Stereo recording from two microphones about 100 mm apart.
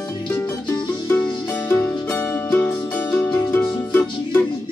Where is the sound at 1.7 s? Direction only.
25° left (ahead or behind).